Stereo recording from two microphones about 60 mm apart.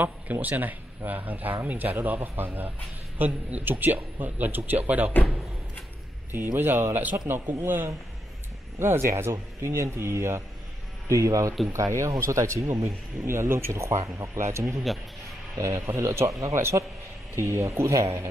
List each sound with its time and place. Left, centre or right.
0.0 s speech: right
6.3 s speech: right
11.1 s speech: right
16.3 s speech: right